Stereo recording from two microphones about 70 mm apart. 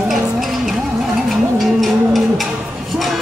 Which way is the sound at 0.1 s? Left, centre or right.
Centre.